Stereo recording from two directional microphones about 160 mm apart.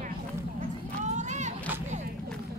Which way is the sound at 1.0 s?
45° right (ahead or behind).